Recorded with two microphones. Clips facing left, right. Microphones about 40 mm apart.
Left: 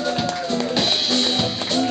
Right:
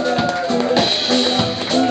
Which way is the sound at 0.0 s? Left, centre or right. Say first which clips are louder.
Right 5 dB; centre.